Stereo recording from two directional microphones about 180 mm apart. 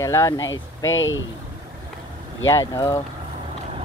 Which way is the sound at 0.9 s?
90° left.